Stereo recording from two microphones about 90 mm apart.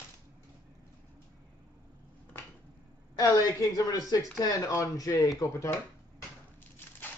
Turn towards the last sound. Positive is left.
turn(degrees=30)  # may be behind; listen again after turning